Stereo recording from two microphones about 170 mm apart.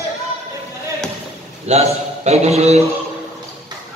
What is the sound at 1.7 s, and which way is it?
A man's voice, 40° right (ahead or behind).